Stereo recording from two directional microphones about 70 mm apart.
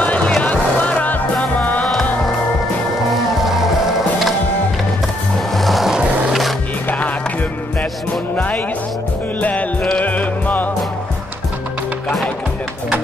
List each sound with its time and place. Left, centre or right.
0.0 s music: centre
3.4 s skateboard: centre
5.5 s music: centre
5.9 s skateboard: centre
8.1 s music: left